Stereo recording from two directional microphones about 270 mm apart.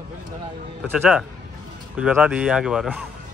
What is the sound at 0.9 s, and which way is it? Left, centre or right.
Speech, centre.